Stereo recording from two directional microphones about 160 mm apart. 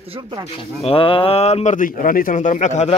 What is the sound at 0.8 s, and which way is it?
A man's voice, 35° left (ahead or behind).